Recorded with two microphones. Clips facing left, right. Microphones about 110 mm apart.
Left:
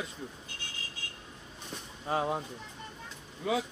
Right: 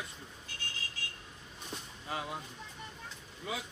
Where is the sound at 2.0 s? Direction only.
40° left (ahead or behind).